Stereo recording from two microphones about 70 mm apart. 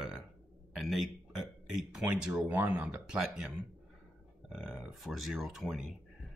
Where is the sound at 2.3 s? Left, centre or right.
Right.